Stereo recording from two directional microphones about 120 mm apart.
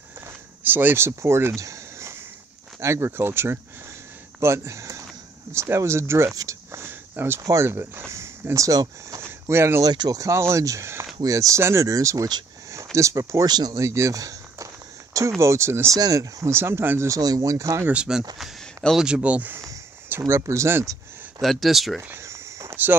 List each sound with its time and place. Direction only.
0.7 s speech: 15° right (ahead or behind)
9.8 s speech: 30° right (ahead or behind)
17.9 s speech: 5° right (ahead or behind); by 21.0 s 25° right (ahead or behind)
21.4 s speech: centre (ahead or behind)
22.1 s a sound: 25° right (ahead or behind)